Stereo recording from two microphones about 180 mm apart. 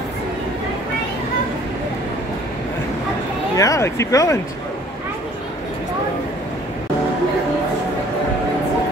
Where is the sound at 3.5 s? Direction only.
20° left (ahead or behind).